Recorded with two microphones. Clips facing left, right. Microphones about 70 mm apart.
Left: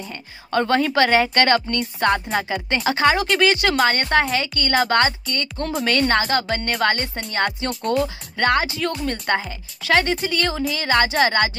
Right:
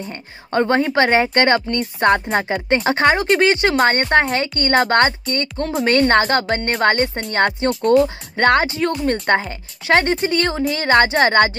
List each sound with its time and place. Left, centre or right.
0.5 s speech: right
3.7 s speech: right